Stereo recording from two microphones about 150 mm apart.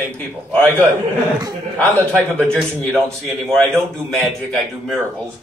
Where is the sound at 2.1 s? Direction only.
5° left (ahead or behind).